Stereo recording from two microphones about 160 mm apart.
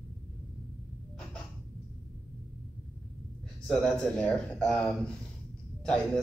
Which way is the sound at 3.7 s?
5° left (ahead or behind).